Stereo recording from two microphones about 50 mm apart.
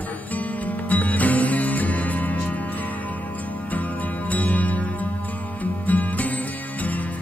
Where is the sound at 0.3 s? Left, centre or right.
Left.